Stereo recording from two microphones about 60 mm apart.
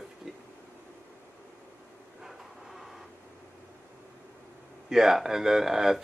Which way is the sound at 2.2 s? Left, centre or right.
Centre.